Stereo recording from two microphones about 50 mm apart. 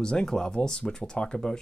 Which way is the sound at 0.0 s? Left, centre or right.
Centre.